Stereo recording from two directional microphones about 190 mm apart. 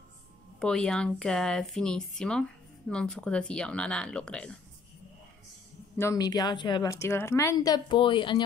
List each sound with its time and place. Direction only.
0.6 s speech: 5° left (ahead or behind)
5.9 s a woman's voice: 15° left (ahead or behind)